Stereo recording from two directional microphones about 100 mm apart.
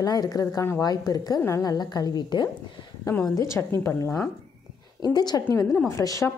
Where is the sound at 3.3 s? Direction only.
30° left (ahead or behind).